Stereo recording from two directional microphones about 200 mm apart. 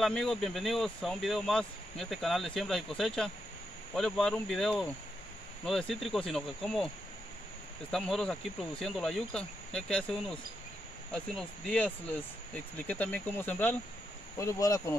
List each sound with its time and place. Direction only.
0.0 s speech: centre (ahead or behind)
7.9 s speech: centre (ahead or behind)